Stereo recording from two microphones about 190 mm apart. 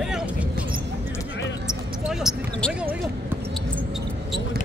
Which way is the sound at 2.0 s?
Centre (ahead or behind).